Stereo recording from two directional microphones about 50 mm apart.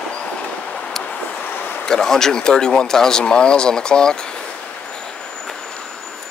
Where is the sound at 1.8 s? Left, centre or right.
Centre.